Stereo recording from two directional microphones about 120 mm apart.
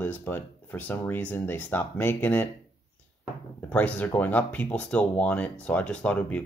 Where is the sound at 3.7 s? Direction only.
15° left (ahead or behind).